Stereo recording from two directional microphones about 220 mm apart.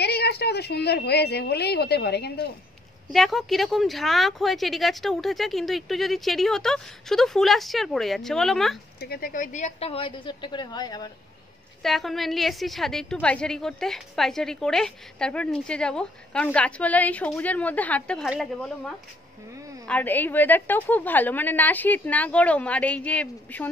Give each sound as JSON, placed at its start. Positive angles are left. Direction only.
{"t": 0.0, "sound": "a woman's voice", "side_deg": 50}
{"t": 3.1, "sound": "a woman's voice", "side_deg": 0}
{"t": 9.0, "sound": "a woman's voice", "side_deg": 45}
{"t": 11.8, "sound": "a woman's voice", "side_deg": 0}
{"t": 19.9, "sound": "a woman's voice", "side_deg": 5}